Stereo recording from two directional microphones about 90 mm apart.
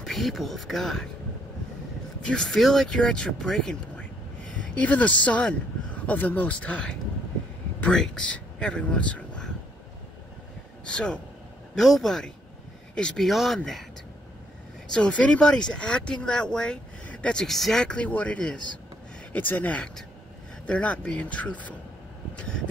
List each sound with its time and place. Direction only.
0.0 s speech: centre (ahead or behind)
2.2 s speech: 5° left (ahead or behind)
4.7 s speech: 15° left (ahead or behind)
10.9 s speech: 10° left (ahead or behind)
14.9 s speech: 10° left (ahead or behind)